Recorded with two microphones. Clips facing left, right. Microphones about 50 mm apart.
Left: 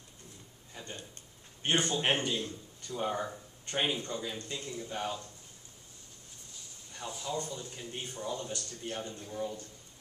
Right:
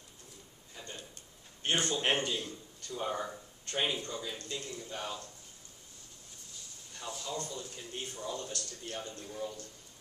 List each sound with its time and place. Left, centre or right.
1.6 s a man's voice: left
2.3 s a man's voice: left
3.0 s a man's voice: centre
7.0 s a man's voice: centre